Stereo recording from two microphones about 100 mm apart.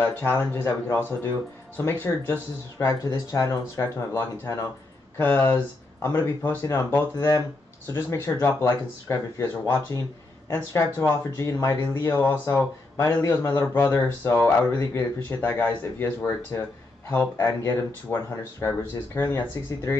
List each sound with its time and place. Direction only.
0.0 s speech: 20° left (ahead or behind)
2.8 s speech: 30° left (ahead or behind)